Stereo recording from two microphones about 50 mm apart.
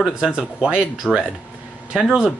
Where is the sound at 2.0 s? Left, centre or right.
Centre.